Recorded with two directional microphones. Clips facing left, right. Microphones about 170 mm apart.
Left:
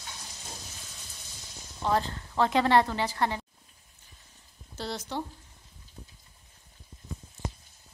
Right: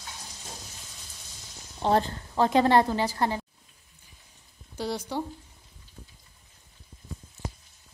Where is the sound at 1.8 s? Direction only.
35° right (ahead or behind).